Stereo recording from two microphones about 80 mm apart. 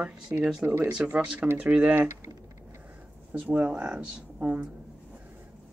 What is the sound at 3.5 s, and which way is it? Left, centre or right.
Speech, centre.